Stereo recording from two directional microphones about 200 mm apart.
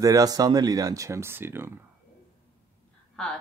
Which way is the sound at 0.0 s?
15° right (ahead or behind).